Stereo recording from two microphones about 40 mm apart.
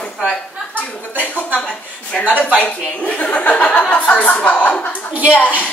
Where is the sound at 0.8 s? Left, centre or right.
Left.